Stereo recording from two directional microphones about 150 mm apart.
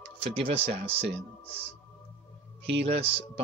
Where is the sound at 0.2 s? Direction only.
40° right (ahead or behind).